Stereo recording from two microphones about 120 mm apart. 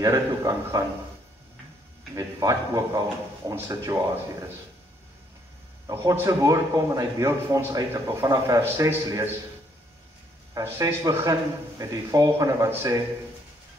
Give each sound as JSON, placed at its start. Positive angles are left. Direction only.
{"t": 0.0, "sound": "a man's voice", "side_deg": -30}
{"t": 2.1, "sound": "a man's voice", "side_deg": -30}
{"t": 5.9, "sound": "a man's voice", "side_deg": -25}
{"t": 10.5, "sound": "a man's voice", "side_deg": -25}